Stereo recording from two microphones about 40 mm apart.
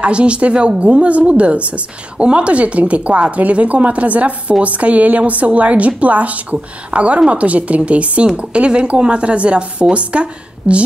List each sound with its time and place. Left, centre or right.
0.0 s a woman's voice: right